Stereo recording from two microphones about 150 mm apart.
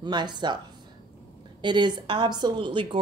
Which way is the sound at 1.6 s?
30° right (ahead or behind).